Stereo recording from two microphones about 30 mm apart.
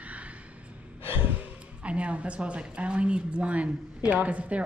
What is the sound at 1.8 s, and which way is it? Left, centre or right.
Speech, right.